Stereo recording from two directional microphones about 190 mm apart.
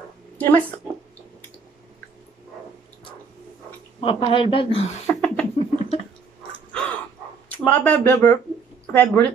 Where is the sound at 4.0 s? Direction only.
25° left (ahead or behind).